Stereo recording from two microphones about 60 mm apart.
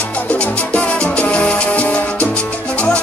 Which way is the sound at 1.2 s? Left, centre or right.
Left.